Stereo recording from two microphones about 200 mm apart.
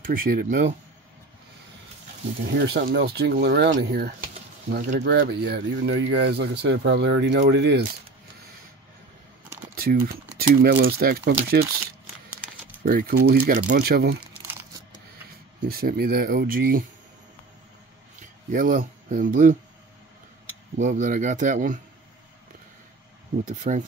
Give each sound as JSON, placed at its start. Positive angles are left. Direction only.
{"t": 0.0, "sound": "speech", "side_deg": -45}
{"t": 2.5, "sound": "speech", "side_deg": -55}
{"t": 9.8, "sound": "speech", "side_deg": -50}
{"t": 12.8, "sound": "speech", "side_deg": -45}
{"t": 15.7, "sound": "speech", "side_deg": -50}
{"t": 18.5, "sound": "speech", "side_deg": -45}
{"t": 20.7, "sound": "speech", "side_deg": -40}
{"t": 23.4, "sound": "speech", "side_deg": -40}